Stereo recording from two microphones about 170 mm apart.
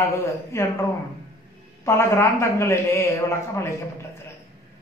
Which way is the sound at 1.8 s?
15° left (ahead or behind).